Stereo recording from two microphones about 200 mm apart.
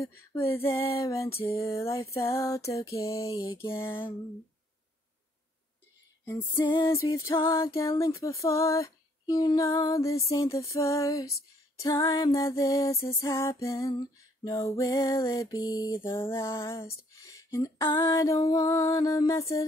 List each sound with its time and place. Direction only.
0.3 s female singing: 10° left (ahead or behind)
0.9 s music: 15° left (ahead or behind)
6.2 s female singing: 15° left (ahead or behind)
7.1 s music: 15° left (ahead or behind)